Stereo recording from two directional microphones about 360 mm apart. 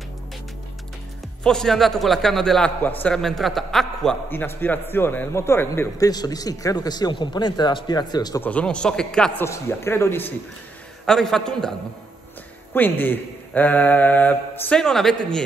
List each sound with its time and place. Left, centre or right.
1.4 s a man's voice: centre
12.7 s a man's voice: centre